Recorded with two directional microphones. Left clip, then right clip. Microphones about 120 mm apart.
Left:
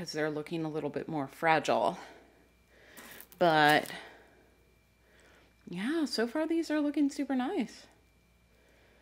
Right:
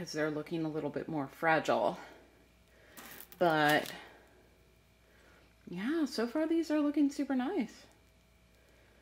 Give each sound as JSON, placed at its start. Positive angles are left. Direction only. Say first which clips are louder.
{"t": 0.0, "sound": "speech", "louder": "left 1 dB", "side_deg": 20}
{"t": 3.3, "sound": "speech", "louder": "left 4 dB", "side_deg": 35}
{"t": 5.7, "sound": "speech", "louder": "left 2 dB", "side_deg": 30}